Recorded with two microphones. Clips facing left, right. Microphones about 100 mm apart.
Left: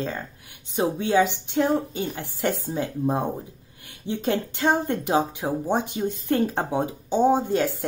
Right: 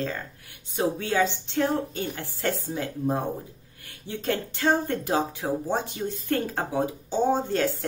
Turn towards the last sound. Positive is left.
turn(degrees=15)  # may be behind; listen again after turning